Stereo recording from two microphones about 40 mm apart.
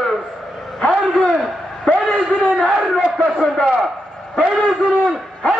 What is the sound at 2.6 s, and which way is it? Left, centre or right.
Crowd, centre.